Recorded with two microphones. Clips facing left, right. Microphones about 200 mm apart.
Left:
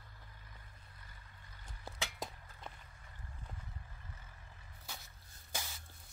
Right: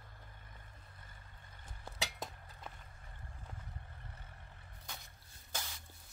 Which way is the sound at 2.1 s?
Centre (ahead or behind).